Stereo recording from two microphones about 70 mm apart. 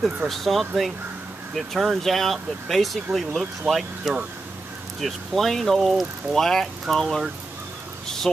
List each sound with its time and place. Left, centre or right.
0.3 s speech: centre